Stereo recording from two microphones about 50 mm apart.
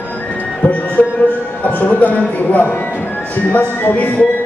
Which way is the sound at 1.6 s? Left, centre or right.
Left.